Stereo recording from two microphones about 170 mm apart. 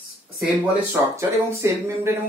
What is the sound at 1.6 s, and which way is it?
Speech, 15° right (ahead or behind).